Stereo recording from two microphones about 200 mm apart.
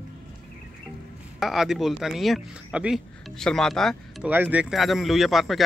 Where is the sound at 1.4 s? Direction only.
Centre (ahead or behind).